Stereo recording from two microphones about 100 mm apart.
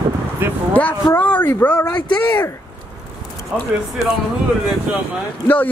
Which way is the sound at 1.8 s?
40° left (ahead or behind).